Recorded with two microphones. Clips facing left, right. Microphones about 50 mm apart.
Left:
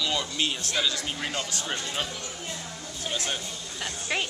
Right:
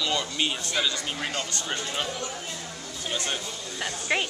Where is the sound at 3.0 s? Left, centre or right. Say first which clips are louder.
Right 1 dB; centre.